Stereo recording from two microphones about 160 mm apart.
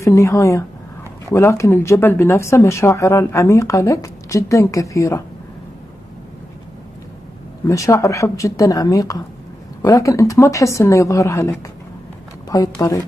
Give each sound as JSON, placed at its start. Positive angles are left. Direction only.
{"t": 0.0, "sound": "speech", "side_deg": 20}
{"t": 7.6, "sound": "speech", "side_deg": 20}
{"t": 12.5, "sound": "speech", "side_deg": 20}